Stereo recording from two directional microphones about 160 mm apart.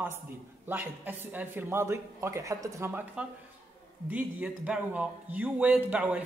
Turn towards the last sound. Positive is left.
turn(degrees=-10)  # may be behind; listen again after turning